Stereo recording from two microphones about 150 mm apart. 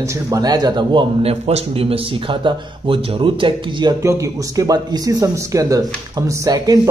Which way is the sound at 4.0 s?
20° right (ahead or behind).